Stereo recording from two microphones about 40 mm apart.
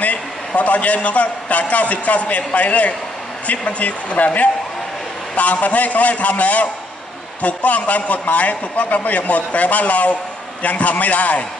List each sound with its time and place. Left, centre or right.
0.6 s a man's voice: left